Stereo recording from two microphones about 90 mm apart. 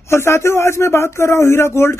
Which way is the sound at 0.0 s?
30° left (ahead or behind).